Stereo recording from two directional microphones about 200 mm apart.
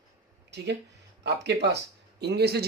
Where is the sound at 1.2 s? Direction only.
55° right (ahead or behind).